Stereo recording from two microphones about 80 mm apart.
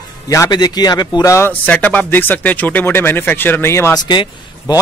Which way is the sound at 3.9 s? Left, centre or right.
Left.